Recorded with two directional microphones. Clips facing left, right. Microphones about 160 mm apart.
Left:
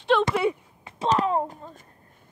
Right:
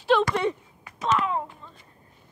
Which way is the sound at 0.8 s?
30° left (ahead or behind).